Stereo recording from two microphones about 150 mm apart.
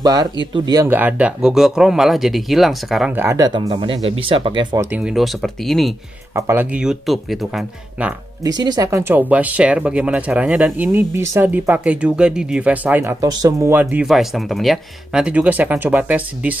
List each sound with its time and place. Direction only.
0.0 s speech: 25° right (ahead or behind)
0.8 s speech: 10° right (ahead or behind)
3.2 s speech: 20° right (ahead or behind)
3.6 s speech: 35° right (ahead or behind)
4.9 s speech: 5° right (ahead or behind)
6.3 s speech: 15° right (ahead or behind)
8.5 s speech: 25° right (ahead or behind); by 16.5 s 10° right (ahead or behind)